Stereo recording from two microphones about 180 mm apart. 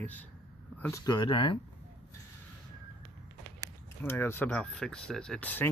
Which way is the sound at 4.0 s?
10° left (ahead or behind).